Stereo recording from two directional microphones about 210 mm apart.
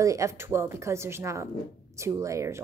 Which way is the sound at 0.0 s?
15° right (ahead or behind).